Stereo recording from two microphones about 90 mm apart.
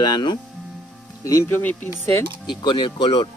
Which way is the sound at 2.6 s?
65° left (ahead or behind).